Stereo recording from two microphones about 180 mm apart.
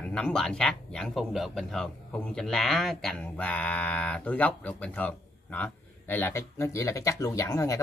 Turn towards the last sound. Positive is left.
turn(degrees=15)  # may be behind; listen again after turning